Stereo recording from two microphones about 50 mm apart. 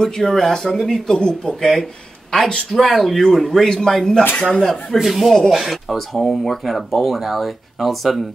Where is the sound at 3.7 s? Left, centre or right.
Centre.